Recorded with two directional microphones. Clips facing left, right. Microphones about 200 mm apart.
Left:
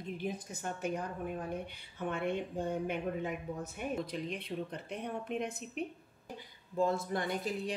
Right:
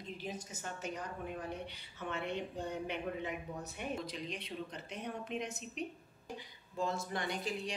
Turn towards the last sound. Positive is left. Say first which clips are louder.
# left 3 dB
turn(degrees=50)  # may be behind; listen again after turning